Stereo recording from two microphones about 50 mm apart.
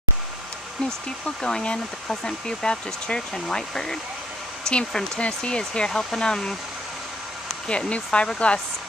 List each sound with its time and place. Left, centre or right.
1.4 s speech: centre
7.6 s speech: left